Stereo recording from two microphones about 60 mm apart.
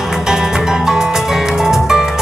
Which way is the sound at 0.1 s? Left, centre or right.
Centre.